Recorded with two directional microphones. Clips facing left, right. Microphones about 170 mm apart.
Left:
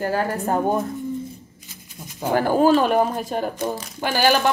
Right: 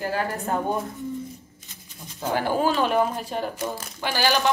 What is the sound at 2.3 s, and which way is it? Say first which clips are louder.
A woman's voice: left 6 dB; 45° left (ahead or behind).